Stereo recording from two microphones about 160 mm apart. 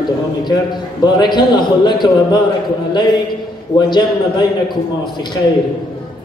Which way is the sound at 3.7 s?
25° left (ahead or behind).